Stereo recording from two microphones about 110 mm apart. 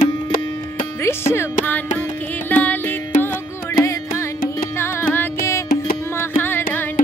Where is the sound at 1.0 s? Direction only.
20° left (ahead or behind).